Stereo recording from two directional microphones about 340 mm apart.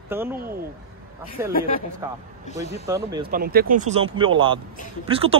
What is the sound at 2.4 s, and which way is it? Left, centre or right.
Speech, centre.